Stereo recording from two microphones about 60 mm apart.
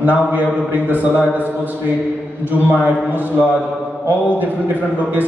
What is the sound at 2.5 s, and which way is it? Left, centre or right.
Speech, right.